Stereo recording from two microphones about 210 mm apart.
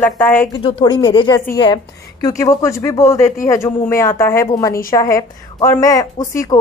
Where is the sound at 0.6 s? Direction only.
20° left (ahead or behind).